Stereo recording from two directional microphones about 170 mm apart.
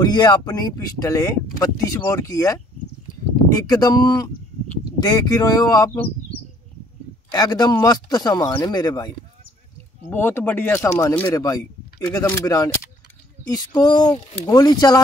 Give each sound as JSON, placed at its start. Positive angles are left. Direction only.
{"t": 0.0, "sound": "speech", "side_deg": 25}
{"t": 7.2, "sound": "a man's voice", "side_deg": 20}
{"t": 13.7, "sound": "speech", "side_deg": 25}